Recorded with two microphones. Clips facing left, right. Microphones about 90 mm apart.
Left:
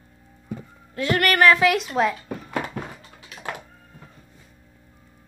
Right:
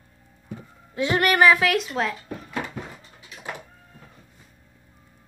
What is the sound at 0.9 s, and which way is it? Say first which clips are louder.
Speech: even; 20° right (ahead or behind).